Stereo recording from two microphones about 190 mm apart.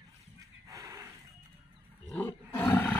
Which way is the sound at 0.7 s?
15° right (ahead or behind).